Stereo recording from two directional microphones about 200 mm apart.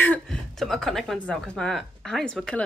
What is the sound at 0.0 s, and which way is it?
Speech, 5° left (ahead or behind).